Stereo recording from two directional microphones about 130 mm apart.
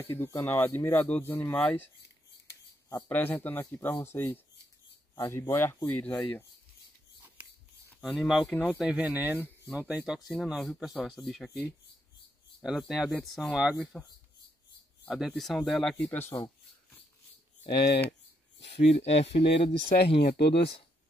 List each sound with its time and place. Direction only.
0.0 s speech: 15° left (ahead or behind)
3.1 s speech: 15° left (ahead or behind)
8.0 s speech: centre (ahead or behind)
8.5 s speech: 10° left (ahead or behind)
8.7 s speech: 5° right (ahead or behind)
12.6 s speech: centre (ahead or behind)
15.0 s speech: 5° right (ahead or behind); by 16.3 s 15° left (ahead or behind)
17.6 s speech: 35° left (ahead or behind)
18.7 s speech: 55° left (ahead or behind)